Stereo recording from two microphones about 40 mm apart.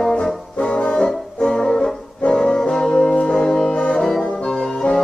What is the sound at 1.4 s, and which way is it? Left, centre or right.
Music, centre.